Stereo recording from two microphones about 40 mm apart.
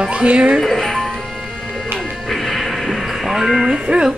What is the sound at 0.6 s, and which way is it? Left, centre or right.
Speech, centre.